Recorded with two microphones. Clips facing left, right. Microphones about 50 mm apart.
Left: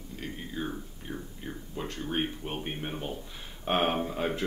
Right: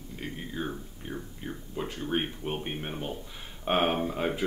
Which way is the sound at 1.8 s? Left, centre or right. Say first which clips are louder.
Right 1 dB; centre.